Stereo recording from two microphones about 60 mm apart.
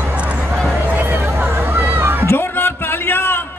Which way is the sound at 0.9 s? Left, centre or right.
Right.